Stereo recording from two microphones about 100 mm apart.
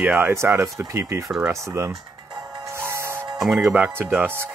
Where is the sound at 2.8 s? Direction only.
25° right (ahead or behind).